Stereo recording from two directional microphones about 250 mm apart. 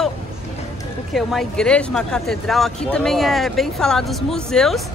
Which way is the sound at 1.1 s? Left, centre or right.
Centre.